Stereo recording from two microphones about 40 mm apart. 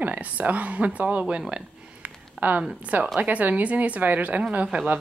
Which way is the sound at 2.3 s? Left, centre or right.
Right.